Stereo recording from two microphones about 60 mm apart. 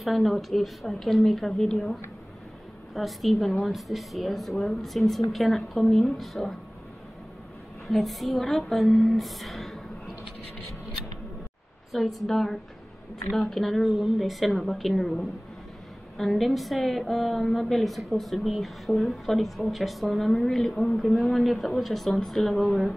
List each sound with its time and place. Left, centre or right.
0.0 s a woman's voice: centre
7.9 s speech: centre
11.9 s a woman's voice: centre